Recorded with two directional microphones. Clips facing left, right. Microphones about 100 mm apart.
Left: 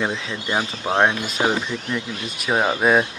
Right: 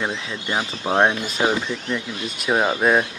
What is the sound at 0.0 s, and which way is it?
Speech, 10° left (ahead or behind).